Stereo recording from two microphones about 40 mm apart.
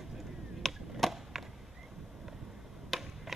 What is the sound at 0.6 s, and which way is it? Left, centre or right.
Chop, centre.